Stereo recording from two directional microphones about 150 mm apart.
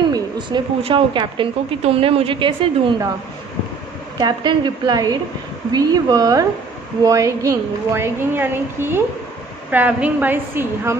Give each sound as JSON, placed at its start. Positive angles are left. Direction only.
{"t": 0.1, "sound": "a woman's voice", "side_deg": -35}
{"t": 4.2, "sound": "a woman's voice", "side_deg": -30}